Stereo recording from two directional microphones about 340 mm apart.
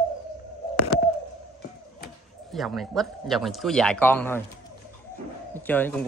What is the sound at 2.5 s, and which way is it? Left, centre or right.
Speech, centre.